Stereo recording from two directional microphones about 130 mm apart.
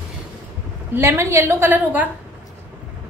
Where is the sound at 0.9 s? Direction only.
20° right (ahead or behind).